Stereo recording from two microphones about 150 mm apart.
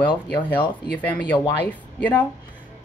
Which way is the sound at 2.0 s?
10° left (ahead or behind).